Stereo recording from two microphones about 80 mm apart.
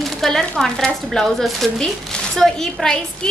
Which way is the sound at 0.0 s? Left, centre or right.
Centre.